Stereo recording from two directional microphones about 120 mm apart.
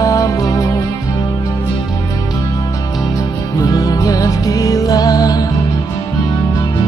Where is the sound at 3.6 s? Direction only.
30° left (ahead or behind).